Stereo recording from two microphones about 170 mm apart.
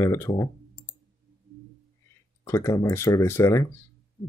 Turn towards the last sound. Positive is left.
turn(degrees=20)  # may be behind; listen again after turning